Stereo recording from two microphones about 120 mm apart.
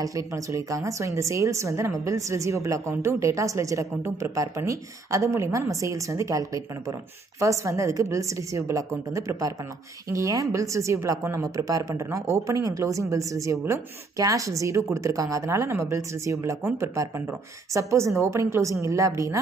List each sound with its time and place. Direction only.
0.0 s a woman's voice: 25° right (ahead or behind)